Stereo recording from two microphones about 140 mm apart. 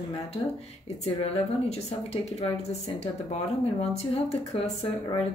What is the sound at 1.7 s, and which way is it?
Speech, 45° left (ahead or behind).